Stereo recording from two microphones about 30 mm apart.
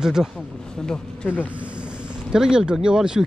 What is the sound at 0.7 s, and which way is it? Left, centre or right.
Speech, left.